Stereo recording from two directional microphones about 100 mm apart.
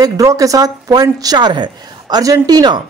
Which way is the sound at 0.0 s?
35° right (ahead or behind).